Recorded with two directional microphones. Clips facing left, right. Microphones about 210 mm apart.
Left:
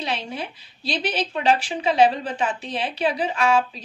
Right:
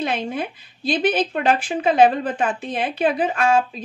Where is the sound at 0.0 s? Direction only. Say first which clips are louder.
Right 5 dB; 50° right (ahead or behind).